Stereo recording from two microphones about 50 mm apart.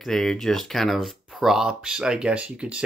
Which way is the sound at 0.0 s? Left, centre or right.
Centre.